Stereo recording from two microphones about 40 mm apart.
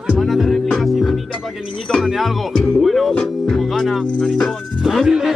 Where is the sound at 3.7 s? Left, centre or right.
Centre.